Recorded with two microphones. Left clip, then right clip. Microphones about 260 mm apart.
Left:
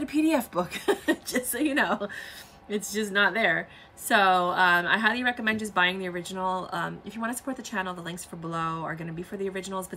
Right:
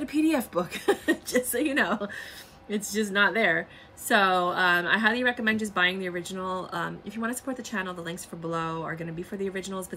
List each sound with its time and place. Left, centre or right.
0.0 s a woman's voice: centre